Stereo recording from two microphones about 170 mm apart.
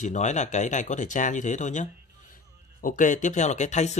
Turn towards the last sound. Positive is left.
turn(degrees=40)  # may be behind; listen again after turning